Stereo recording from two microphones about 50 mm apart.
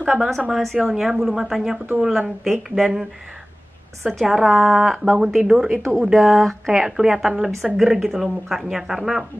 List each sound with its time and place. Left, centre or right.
0.0 s a woman's voice: centre
0.5 s a woman's voice: centre
4.1 s a woman's voice: centre
5.8 s speech: centre
6.0 s a woman's voice: centre
7.0 s speech: centre